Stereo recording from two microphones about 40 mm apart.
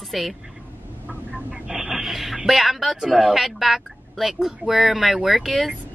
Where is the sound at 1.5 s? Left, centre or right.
Right.